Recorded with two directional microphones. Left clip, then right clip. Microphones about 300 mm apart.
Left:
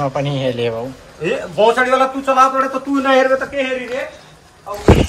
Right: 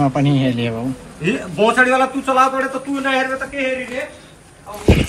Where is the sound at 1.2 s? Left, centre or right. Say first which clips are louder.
Left 3 dB; left.